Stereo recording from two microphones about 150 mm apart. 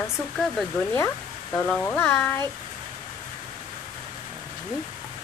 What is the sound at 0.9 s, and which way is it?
Speech, 20° left (ahead or behind).